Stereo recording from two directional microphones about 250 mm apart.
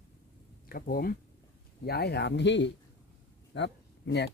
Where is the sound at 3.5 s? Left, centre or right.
Left.